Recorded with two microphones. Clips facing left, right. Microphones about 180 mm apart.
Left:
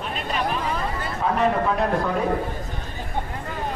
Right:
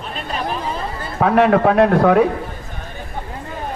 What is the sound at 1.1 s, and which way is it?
A man's voice, 75° right (ahead or behind).